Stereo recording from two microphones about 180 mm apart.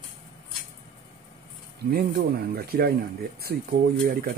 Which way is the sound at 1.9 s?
60° right (ahead or behind).